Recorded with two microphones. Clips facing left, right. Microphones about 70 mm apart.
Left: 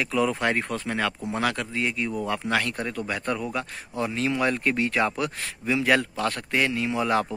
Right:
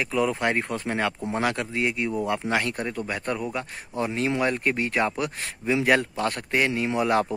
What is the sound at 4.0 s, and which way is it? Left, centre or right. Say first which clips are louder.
A man's voice: right 1 dB; right.